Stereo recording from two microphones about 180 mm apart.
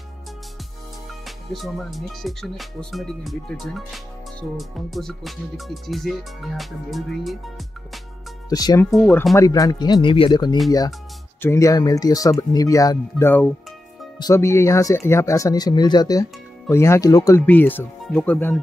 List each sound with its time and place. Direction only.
1.2 s music: centre (ahead or behind)
8.5 s speech: 20° left (ahead or behind)
8.9 s music: 5° left (ahead or behind)
9.3 s speech: 20° left (ahead or behind)